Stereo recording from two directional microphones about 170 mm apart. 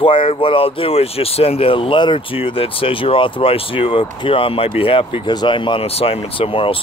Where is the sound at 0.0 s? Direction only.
30° left (ahead or behind).